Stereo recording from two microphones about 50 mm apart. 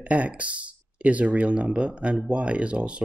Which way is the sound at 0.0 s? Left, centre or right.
Right.